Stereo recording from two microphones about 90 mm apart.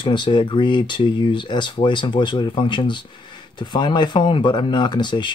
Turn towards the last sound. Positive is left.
turn(degrees=55)  # may be behind; listen again after turning